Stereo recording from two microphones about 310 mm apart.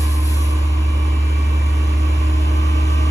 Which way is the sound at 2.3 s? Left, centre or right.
Centre.